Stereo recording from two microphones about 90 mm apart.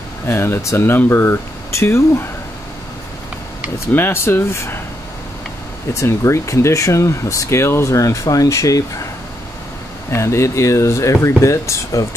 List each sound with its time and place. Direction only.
0.3 s speech: 30° left (ahead or behind)
3.9 s speech: 25° left (ahead or behind)
5.9 s speech: 30° left (ahead or behind)
10.1 s speech: 30° left (ahead or behind)